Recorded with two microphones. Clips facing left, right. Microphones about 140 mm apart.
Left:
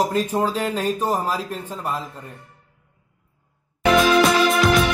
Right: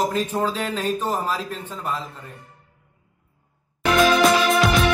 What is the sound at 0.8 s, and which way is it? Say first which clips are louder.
Speech: left 1 dB; 10° left (ahead or behind).